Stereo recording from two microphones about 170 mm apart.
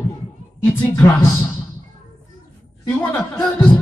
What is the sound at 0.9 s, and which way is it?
Music, 20° left (ahead or behind).